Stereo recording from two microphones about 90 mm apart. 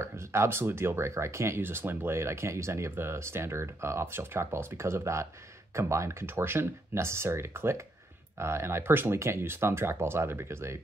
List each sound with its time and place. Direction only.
0.0 s speech: 30° right (ahead or behind)